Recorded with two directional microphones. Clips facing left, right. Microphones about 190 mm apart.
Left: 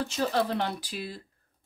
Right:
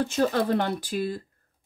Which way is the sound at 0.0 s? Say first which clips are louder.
Right 4 dB; 50° right (ahead or behind).